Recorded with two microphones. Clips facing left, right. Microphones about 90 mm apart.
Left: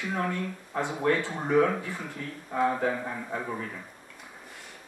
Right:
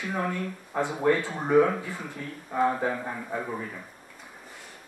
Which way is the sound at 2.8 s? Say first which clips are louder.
Even; 20° right (ahead or behind).